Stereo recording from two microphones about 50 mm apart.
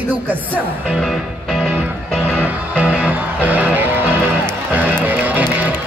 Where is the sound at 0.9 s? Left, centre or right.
Centre.